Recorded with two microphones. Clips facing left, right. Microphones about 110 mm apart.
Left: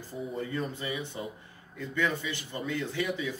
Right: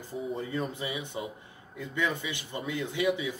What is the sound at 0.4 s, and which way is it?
A man's voice, 20° right (ahead or behind).